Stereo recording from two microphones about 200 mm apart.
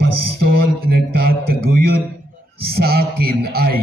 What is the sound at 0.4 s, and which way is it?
Music, 50° right (ahead or behind).